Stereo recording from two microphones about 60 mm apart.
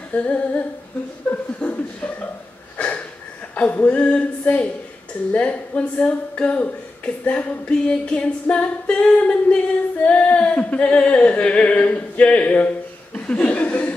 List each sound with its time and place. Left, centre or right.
0.1 s singing: left
1.6 s chuckle: left
2.8 s singing: left